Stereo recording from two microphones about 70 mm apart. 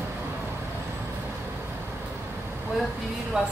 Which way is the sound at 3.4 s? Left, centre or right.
Centre.